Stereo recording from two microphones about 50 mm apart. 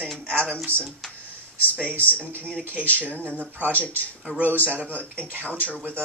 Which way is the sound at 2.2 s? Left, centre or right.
Right.